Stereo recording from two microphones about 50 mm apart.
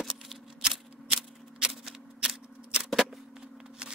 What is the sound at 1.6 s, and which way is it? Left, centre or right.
Typewriter, centre.